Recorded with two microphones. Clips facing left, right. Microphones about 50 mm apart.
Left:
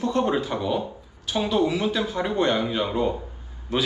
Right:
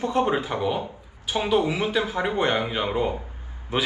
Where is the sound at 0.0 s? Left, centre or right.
Centre.